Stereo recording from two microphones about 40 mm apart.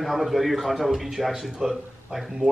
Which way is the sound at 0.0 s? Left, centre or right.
Centre.